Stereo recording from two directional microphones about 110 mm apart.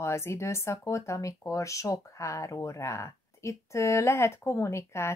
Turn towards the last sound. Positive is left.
turn(degrees=25)  # may be behind; listen again after turning